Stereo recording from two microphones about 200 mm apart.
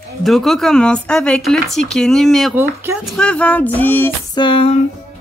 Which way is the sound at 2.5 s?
10° right (ahead or behind).